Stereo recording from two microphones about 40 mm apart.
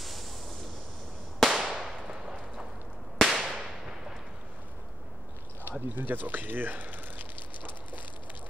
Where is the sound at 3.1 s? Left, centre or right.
Centre.